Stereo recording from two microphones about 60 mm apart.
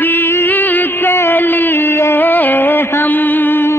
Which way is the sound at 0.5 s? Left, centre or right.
Left.